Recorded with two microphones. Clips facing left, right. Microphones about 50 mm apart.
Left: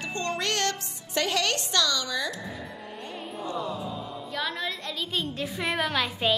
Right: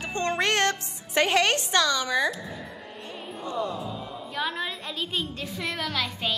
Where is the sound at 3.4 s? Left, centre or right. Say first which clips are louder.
Right 2 dB; centre.